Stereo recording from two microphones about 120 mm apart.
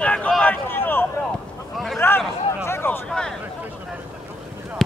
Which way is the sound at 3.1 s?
5° left (ahead or behind).